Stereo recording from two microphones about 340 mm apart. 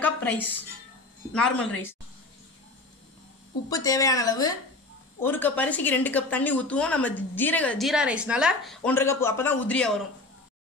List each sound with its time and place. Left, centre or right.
0.0 s a woman's voice: centre
3.7 s a woman's voice: centre